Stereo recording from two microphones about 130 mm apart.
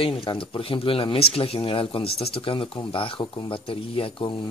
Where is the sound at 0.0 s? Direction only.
45° left (ahead or behind).